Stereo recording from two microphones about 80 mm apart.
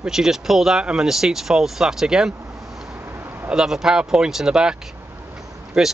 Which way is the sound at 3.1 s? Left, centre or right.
Right.